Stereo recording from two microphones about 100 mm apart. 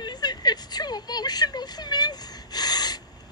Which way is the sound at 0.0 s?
45° left (ahead or behind).